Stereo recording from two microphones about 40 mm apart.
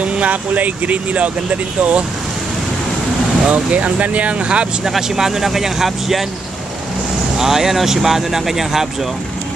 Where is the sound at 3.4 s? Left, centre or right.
Right.